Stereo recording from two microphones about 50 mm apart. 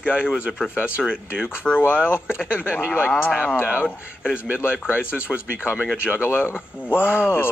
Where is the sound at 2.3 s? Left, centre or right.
Right.